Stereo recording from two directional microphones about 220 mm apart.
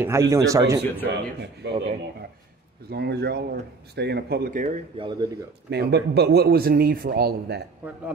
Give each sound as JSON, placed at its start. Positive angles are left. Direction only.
{"t": 0.0, "sound": "a man's voice", "side_deg": -15}
{"t": 1.1, "sound": "speech", "side_deg": -50}
{"t": 2.9, "sound": "speech", "side_deg": -50}
{"t": 4.9, "sound": "speech", "side_deg": -20}
{"t": 5.7, "sound": "speech", "side_deg": -50}
{"t": 7.8, "sound": "a man's voice", "side_deg": -5}